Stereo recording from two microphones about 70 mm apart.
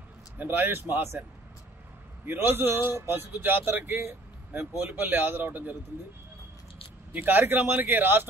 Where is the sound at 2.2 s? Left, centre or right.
Right.